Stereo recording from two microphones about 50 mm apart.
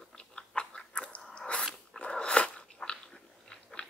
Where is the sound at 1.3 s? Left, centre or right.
Left.